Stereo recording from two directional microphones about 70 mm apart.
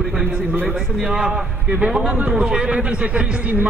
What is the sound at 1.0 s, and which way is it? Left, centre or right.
A man's voice, centre.